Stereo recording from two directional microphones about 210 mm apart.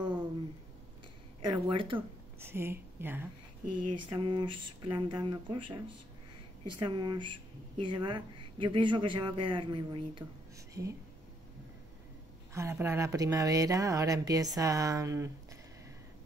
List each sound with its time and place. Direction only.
1.5 s speech: 25° right (ahead or behind)
2.0 s speech: 10° right (ahead or behind)
3.9 s speech: 20° right (ahead or behind)
12.5 s speech: 10° right (ahead or behind)